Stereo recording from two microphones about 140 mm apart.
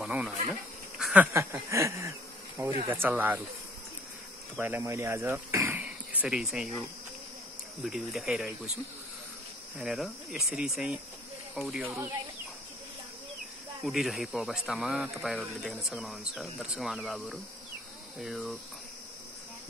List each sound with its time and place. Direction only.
0.0 s insect: 5° right (ahead or behind)
2.9 s speech: 15° right (ahead or behind)
4.6 s speech: 15° right (ahead or behind)
7.8 s speech: centre (ahead or behind)
9.8 s speech: centre (ahead or behind)
11.8 s speech: 10° right (ahead or behind)
13.8 s speech: centre (ahead or behind)